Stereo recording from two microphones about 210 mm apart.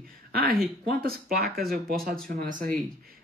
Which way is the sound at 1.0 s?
45° right (ahead or behind).